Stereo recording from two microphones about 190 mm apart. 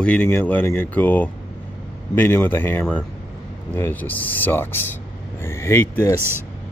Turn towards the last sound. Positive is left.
turn(degrees=10)  # may be behind; listen again after turning